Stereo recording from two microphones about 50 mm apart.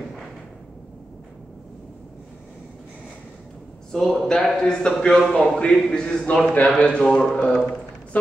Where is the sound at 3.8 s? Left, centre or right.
Centre.